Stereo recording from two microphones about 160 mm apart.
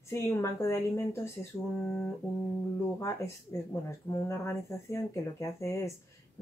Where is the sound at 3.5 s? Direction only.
20° left (ahead or behind).